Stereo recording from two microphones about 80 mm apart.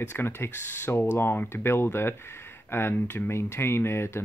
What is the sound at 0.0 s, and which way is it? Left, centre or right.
Speech, left.